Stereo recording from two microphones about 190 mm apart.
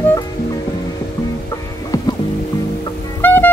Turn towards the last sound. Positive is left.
turn(degrees=10)  # may be behind; listen again after turning